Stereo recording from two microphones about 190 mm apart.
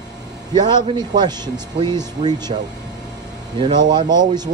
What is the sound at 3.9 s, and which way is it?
Speech, 20° right (ahead or behind).